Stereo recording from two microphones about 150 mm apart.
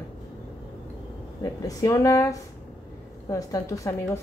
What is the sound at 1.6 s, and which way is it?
Speech, 20° left (ahead or behind).